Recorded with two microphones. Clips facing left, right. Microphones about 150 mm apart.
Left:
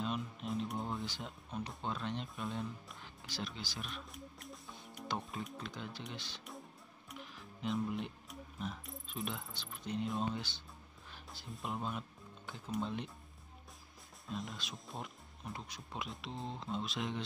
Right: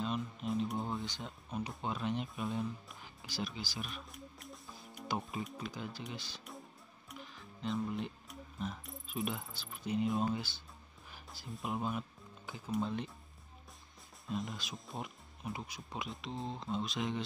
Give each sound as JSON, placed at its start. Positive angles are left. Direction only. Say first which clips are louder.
{"t": 0.0, "sound": "speech", "louder": "right 2 dB", "side_deg": 0}
{"t": 14.2, "sound": "speech", "louder": "right 3 dB", "side_deg": 0}